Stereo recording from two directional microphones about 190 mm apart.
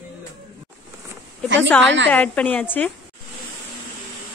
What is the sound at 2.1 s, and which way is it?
Speech, 10° left (ahead or behind).